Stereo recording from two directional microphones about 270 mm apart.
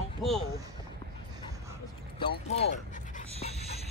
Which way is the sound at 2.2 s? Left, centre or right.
Left.